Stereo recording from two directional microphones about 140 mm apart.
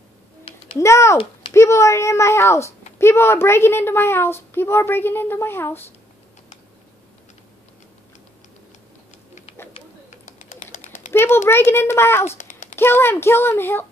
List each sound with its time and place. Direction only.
0.7 s a child's voice: 20° left (ahead or behind)
10.2 s typing: 60° left (ahead or behind)
11.1 s a sound: 15° left (ahead or behind)
11.4 s a child's voice: 15° left (ahead or behind)
12.3 s a sound: 60° left (ahead or behind)
12.7 s a child's voice: 15° left (ahead or behind)